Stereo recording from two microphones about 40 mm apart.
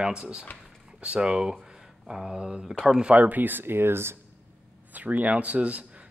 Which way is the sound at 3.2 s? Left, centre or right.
Right.